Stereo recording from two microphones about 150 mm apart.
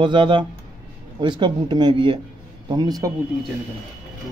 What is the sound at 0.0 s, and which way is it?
A man's voice, 35° right (ahead or behind).